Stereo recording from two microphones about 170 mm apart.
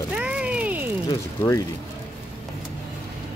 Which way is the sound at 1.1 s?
20° left (ahead or behind).